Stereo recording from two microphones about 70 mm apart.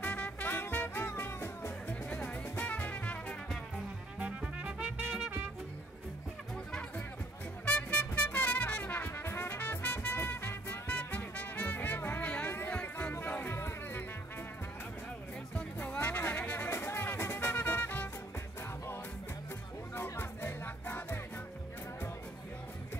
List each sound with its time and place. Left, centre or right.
0.0 s music: left
2.0 s music: left
4.4 s music: centre
7.6 s music: left
10.9 s music: left
15.5 s music: left
16.6 s music: left
20.0 s music: left